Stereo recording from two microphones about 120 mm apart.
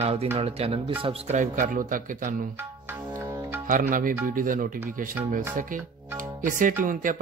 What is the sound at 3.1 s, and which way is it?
Music, 20° right (ahead or behind).